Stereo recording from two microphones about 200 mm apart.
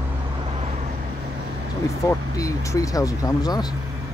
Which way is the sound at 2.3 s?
15° left (ahead or behind).